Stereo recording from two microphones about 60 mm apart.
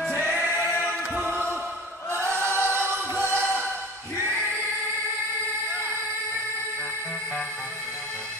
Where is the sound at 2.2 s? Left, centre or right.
Right.